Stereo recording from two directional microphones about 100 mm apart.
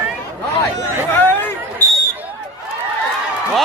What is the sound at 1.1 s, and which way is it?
Chatter, 20° left (ahead or behind).